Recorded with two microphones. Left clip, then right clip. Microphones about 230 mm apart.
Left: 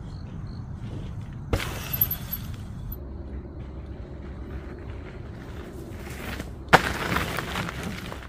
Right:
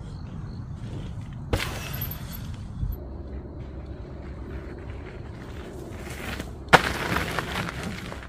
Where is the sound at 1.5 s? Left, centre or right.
Centre.